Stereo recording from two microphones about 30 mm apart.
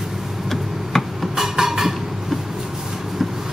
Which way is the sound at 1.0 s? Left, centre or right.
Centre.